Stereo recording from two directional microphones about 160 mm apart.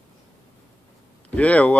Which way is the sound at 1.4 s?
10° left (ahead or behind).